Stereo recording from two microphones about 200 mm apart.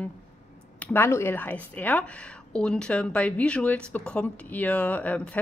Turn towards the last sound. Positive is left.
turn(degrees=5)  # may be behind; listen again after turning